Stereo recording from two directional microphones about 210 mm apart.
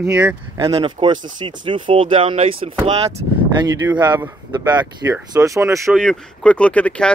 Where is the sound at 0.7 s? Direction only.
20° right (ahead or behind).